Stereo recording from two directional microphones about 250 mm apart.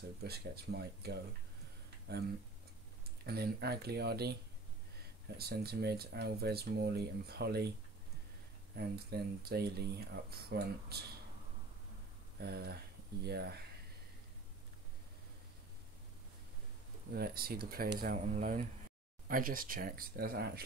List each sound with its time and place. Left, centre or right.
0.2 s speech: right
3.3 s speech: right
5.4 s speech: right
8.7 s speech: right
12.4 s speech: right
17.1 s speech: right